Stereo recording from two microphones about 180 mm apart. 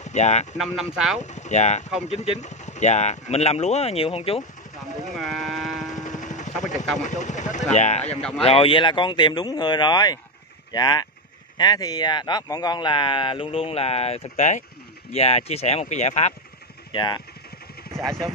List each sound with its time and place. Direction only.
0.0 s speech: 40° left (ahead or behind)
0.6 s speech: 5° right (ahead or behind)
1.2 s speech: 40° left (ahead or behind)
5.2 s sheep: centre (ahead or behind)
5.9 s music: 45° left (ahead or behind)
6.6 s a sound: 40° left (ahead or behind)
7.0 s speech: 45° left (ahead or behind)
8.1 s speech: 5° left (ahead or behind)
8.5 s speech: 30° left (ahead or behind)
16.9 s speech: 25° left (ahead or behind)
17.9 s speech: 20° right (ahead or behind)